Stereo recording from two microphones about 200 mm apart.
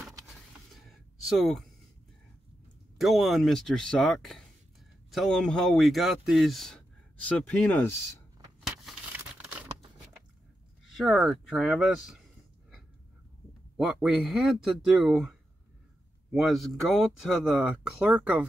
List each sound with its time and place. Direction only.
0.7 s a sound: centre (ahead or behind)
3.0 s speech: centre (ahead or behind)
11.0 s speech: centre (ahead or behind)
13.7 s speech: 5° right (ahead or behind)